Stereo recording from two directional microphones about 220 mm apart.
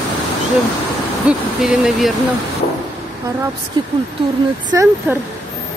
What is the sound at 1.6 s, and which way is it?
Speech, centre (ahead or behind).